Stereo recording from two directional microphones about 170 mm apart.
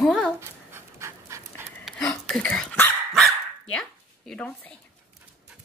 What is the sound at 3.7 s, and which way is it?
Zipper, 5° left (ahead or behind).